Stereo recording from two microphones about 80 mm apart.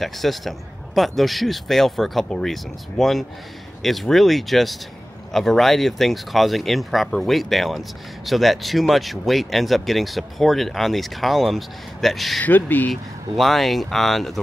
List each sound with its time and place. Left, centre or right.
0.0 s speech: centre
12.4 s speech: left
12.9 s speech: centre